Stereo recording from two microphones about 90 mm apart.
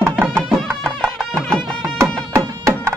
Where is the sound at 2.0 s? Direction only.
30° right (ahead or behind).